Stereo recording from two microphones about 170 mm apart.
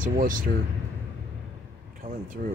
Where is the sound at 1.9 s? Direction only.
55° right (ahead or behind).